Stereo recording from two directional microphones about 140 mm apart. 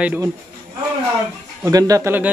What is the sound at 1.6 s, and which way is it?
Speech, 25° right (ahead or behind).